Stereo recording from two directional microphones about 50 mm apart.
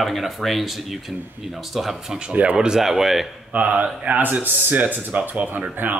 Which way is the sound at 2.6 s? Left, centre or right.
Centre.